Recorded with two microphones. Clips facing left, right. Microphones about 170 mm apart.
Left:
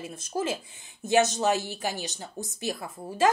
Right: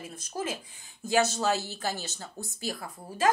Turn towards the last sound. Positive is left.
turn(degrees=25)  # may be behind; listen again after turning